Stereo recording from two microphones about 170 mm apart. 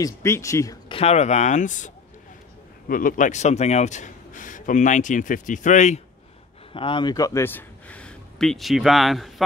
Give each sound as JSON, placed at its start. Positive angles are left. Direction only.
{"t": 0.0, "sound": "speech", "side_deg": 15}
{"t": 0.8, "sound": "a man's voice", "side_deg": 35}
{"t": 2.9, "sound": "a man's voice", "side_deg": 55}
{"t": 6.7, "sound": "a man's voice", "side_deg": 30}